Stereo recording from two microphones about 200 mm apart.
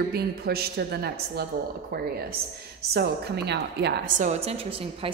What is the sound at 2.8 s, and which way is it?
A woman's voice, 50° right (ahead or behind).